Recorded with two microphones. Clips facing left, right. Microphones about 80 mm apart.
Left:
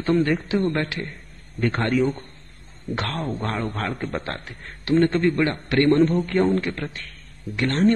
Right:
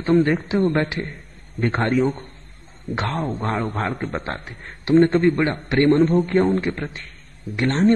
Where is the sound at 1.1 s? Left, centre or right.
Centre.